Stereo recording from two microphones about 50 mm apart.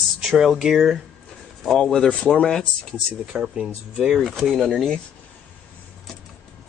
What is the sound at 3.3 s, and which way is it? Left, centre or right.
Speech, centre.